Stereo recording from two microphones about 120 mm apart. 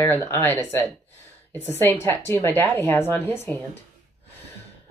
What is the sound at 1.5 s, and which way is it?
Speech, 15° left (ahead or behind).